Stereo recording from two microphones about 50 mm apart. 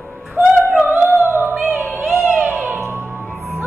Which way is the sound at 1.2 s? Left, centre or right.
Right.